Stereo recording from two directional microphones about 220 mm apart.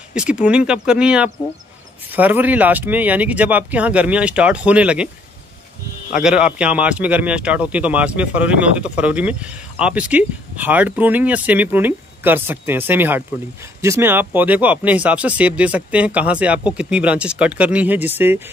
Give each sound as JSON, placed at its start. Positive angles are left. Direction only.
{"t": 0.1, "sound": "speech", "side_deg": -5}
{"t": 6.2, "sound": "speech", "side_deg": -5}